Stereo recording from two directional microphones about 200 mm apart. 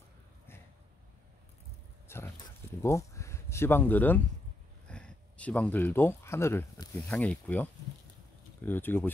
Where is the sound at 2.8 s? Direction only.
15° left (ahead or behind).